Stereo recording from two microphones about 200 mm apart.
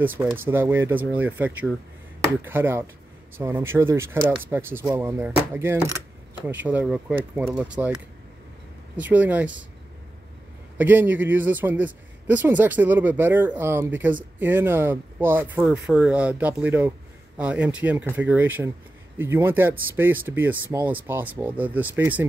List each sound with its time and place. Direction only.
0.0 s a man's voice: 10° right (ahead or behind)
10.8 s a man's voice: 10° right (ahead or behind)